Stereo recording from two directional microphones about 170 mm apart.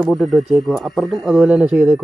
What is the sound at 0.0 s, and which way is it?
Speech, centre (ahead or behind).